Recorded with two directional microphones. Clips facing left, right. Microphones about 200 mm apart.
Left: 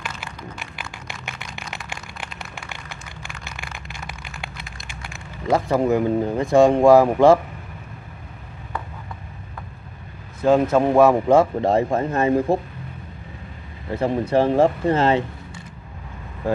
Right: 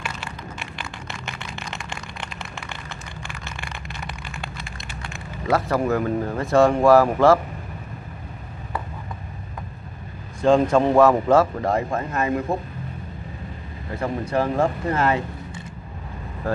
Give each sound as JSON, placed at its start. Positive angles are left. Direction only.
{"t": 0.2, "sound": "a sound", "side_deg": 10}
{"t": 1.8, "sound": "vehicle", "side_deg": 5}
{"t": 3.4, "sound": "vehicle", "side_deg": 10}
{"t": 4.0, "sound": "a sound", "side_deg": 0}
{"t": 4.8, "sound": "speech", "side_deg": 10}
{"t": 10.4, "sound": "speech", "side_deg": 5}
{"t": 11.6, "sound": "speech", "side_deg": 25}
{"t": 13.9, "sound": "speech", "side_deg": 30}